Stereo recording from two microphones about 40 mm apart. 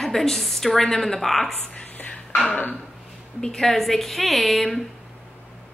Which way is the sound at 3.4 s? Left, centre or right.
Centre.